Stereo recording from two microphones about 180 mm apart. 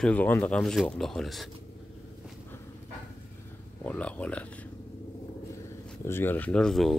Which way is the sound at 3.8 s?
5° left (ahead or behind).